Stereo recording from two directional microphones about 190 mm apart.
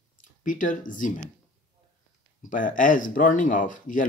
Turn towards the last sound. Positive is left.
turn(degrees=45)  # may be behind; listen again after turning